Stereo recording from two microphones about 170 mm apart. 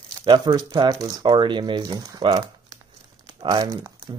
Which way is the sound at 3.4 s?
25° right (ahead or behind).